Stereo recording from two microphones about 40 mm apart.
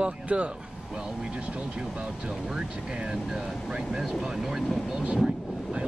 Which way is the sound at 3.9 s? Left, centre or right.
Centre.